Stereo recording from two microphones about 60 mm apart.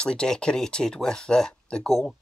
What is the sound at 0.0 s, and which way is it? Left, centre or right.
Speech, centre.